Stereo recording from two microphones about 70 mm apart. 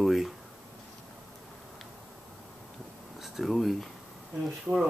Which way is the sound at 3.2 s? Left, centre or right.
Centre.